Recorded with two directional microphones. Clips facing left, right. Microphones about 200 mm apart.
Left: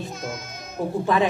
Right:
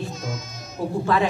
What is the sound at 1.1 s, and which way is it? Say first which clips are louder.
Speech: left 1 dB; 20° left (ahead or behind).